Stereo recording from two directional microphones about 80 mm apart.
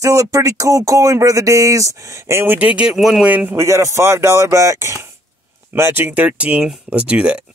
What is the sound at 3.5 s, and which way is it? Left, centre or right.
Speech, right.